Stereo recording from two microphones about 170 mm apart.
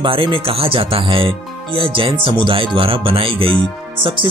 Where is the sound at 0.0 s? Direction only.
30° right (ahead or behind).